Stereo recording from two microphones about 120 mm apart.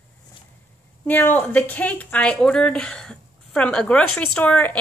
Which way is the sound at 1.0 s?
15° left (ahead or behind).